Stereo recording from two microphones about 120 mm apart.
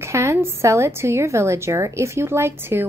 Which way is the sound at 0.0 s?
25° right (ahead or behind).